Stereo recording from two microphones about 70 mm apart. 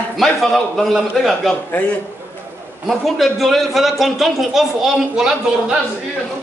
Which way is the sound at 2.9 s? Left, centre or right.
Centre.